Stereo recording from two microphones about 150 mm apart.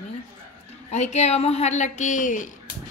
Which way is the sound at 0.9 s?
50° left (ahead or behind).